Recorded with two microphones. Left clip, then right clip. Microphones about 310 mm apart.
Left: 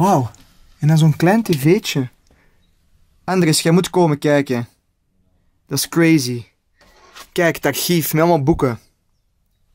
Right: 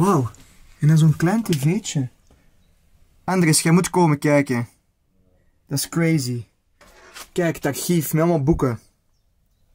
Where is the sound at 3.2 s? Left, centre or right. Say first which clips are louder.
Left 3 dB; centre.